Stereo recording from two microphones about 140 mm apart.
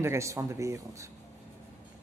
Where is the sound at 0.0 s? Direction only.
20° right (ahead or behind).